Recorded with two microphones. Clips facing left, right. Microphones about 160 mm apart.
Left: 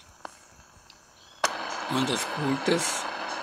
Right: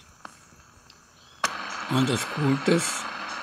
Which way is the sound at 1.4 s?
40° left (ahead or behind).